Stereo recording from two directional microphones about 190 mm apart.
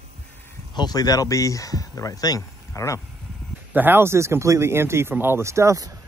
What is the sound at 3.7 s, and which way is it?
Speech, 10° right (ahead or behind).